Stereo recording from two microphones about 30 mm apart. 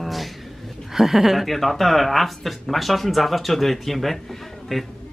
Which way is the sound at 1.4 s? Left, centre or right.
Centre.